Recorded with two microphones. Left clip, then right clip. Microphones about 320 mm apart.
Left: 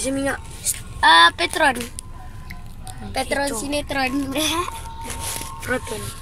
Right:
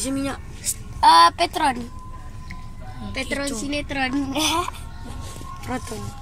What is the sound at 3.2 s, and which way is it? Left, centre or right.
Speech, left.